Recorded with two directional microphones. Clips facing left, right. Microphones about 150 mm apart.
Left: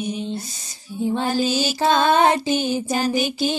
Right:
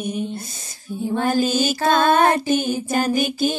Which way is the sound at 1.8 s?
20° left (ahead or behind).